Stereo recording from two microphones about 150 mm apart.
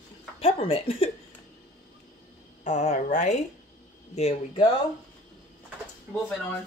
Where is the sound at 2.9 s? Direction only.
55° left (ahead or behind).